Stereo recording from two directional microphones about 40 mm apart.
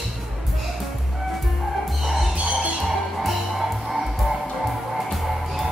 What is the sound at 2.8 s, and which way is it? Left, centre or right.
Music, centre.